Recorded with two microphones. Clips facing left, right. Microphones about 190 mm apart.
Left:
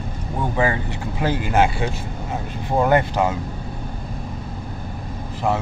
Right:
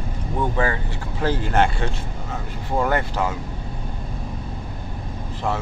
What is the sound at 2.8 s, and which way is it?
Speech, 20° left (ahead or behind).